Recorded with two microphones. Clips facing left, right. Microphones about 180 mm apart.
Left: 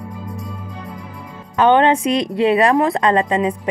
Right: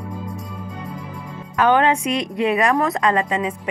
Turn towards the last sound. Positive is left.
turn(degrees=30)  # may be behind; listen again after turning